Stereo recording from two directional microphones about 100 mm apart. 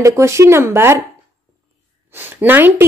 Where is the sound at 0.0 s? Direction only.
30° right (ahead or behind).